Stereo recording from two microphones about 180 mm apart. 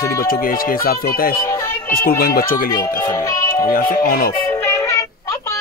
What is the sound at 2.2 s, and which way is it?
Speech, 55° left (ahead or behind).